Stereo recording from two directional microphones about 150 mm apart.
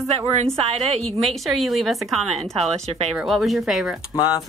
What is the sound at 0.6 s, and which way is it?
Speech, 45° right (ahead or behind).